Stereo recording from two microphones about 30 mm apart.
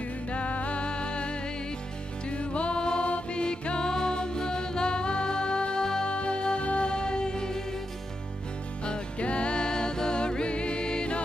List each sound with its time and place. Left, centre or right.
0.3 s music: left
0.7 s music: left
2.8 s mantra: left
3.1 s music: left
8.8 s music: left